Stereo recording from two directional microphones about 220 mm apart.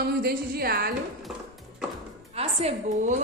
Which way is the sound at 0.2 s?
45° right (ahead or behind).